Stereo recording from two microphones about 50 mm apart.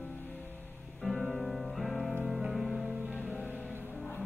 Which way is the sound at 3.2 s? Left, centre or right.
Left.